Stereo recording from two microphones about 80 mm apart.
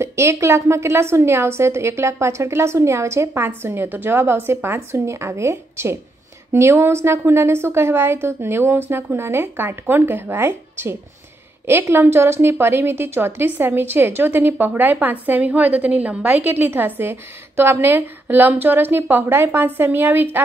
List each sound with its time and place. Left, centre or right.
0.0 s a woman's voice: right